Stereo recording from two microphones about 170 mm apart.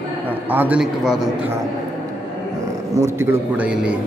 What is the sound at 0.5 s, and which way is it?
Speech, 10° right (ahead or behind).